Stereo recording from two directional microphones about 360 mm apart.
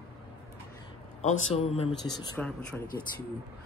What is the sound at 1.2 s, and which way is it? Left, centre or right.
Speech, centre.